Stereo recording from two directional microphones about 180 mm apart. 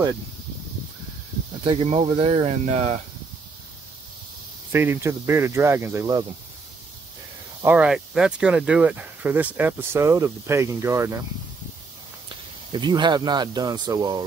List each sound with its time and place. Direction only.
1.6 s speech: 30° right (ahead or behind)
4.7 s speech: 15° right (ahead or behind)
7.6 s speech: 5° right (ahead or behind)
12.3 s speech: 25° right (ahead or behind)